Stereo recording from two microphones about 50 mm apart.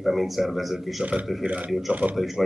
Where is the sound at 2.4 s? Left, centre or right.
Centre.